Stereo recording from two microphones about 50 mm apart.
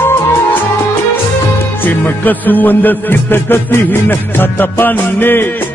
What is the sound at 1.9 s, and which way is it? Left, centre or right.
Music, left.